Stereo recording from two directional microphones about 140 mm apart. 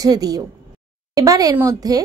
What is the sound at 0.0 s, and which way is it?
Speech, 25° right (ahead or behind).